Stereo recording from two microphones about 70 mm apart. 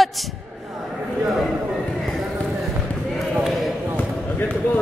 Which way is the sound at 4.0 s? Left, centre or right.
Left.